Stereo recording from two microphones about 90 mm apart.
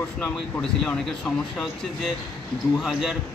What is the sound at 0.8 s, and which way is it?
Speech, 10° left (ahead or behind).